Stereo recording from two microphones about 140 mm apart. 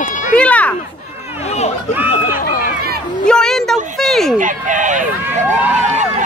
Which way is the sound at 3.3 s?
5° left (ahead or behind).